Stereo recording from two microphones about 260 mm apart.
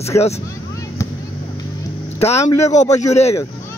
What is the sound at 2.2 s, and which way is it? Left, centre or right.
Speech, left.